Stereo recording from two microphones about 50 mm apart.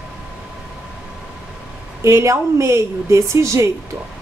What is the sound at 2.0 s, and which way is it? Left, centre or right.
A woman's voice, right.